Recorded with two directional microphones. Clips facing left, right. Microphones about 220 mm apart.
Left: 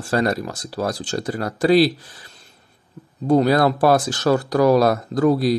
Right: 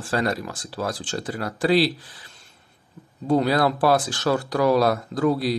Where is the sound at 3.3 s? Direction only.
45° left (ahead or behind).